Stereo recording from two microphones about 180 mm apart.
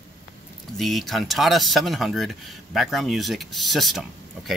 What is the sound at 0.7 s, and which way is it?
Speech, centre (ahead or behind).